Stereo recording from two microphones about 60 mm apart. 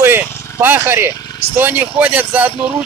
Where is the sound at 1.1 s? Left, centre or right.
Left.